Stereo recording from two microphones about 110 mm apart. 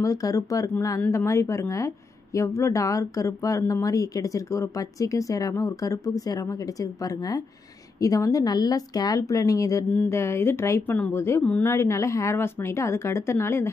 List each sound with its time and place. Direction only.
0.0 s speech: 30° left (ahead or behind)
9.8 s speech: 20° left (ahead or behind)